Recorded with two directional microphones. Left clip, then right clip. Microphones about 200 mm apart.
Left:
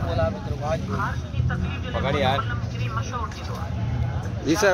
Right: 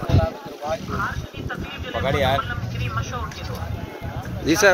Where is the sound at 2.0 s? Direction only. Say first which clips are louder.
Right 2 dB; 45° right (ahead or behind).